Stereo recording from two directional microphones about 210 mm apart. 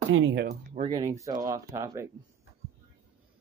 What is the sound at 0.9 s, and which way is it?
Speech, 15° right (ahead or behind).